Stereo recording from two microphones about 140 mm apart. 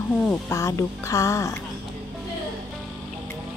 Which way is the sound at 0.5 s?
20° left (ahead or behind).